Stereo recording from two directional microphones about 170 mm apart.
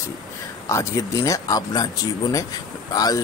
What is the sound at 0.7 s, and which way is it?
Speech, 15° left (ahead or behind).